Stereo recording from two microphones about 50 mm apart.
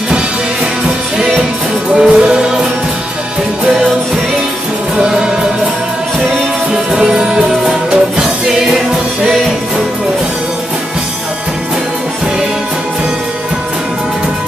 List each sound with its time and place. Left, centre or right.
0.8 s music: centre
4.9 s music: centre
6.7 s music: centre